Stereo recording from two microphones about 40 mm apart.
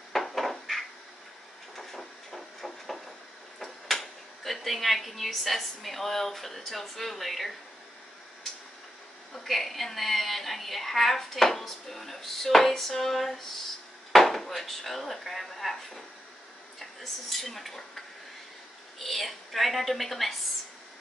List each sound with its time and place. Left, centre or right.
0.1 s cupboard open or close: centre
1.8 s a sound: centre
3.5 s speech: centre
9.3 s speech: centre
17.0 s speech: centre